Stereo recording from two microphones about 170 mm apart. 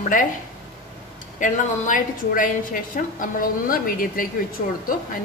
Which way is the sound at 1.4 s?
50° left (ahead or behind).